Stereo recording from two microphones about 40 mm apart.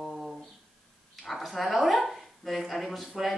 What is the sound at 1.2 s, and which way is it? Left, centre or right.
Speech, centre.